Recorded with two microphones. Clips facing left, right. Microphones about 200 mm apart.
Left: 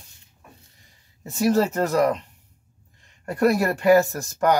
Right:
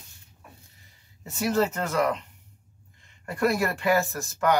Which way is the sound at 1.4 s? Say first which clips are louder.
Left 5 dB; 40° left (ahead or behind).